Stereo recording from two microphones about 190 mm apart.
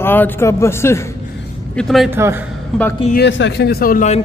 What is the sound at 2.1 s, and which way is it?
Speech, 10° right (ahead or behind).